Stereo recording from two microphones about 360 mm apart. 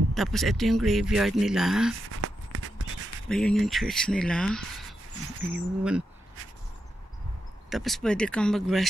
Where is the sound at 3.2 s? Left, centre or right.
Centre.